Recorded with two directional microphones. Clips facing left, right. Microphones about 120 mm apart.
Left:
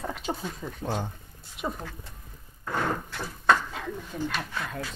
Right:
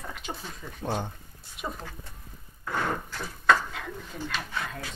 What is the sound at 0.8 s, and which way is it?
Speech, 5° right (ahead or behind).